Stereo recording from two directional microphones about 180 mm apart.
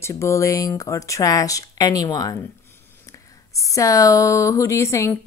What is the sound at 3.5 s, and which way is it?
Speech, 15° left (ahead or behind).